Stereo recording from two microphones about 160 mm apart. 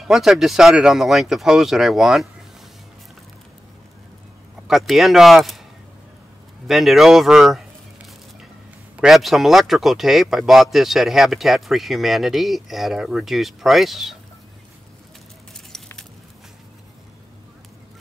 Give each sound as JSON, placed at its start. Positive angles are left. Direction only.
{"t": 0.1, "sound": "speech", "side_deg": 0}
{"t": 4.6, "sound": "speech", "side_deg": 0}
{"t": 6.7, "sound": "speech", "side_deg": 0}
{"t": 8.9, "sound": "speech", "side_deg": 0}
{"t": 15.7, "sound": "keys jangling", "side_deg": 5}